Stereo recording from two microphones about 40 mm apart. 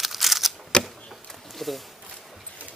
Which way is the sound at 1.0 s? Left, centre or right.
Centre.